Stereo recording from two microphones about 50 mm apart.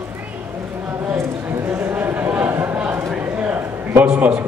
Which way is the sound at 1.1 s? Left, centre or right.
Right.